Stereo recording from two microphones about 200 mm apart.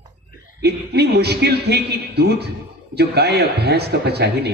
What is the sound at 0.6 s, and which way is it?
A man's voice, 55° right (ahead or behind).